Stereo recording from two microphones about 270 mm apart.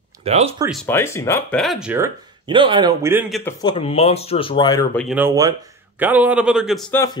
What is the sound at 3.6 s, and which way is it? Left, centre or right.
Speech, centre.